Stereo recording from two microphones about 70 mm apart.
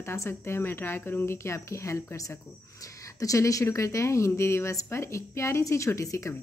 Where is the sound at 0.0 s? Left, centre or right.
Left.